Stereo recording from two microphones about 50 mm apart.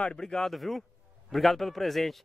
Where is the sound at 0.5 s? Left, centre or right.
Centre.